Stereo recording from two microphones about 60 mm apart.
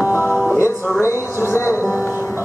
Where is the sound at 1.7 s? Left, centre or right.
Right.